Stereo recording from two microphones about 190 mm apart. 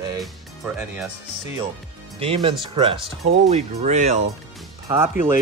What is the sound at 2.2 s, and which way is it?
Speech, 30° right (ahead or behind).